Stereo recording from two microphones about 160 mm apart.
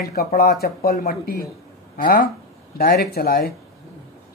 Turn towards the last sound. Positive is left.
turn(degrees=70)  # may be behind; listen again after turning